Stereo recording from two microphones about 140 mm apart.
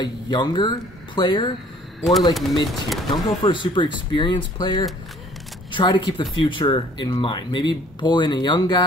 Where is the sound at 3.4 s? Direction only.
35° left (ahead or behind).